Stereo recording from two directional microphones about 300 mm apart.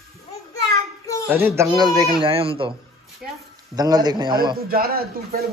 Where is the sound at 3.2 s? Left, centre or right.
Centre.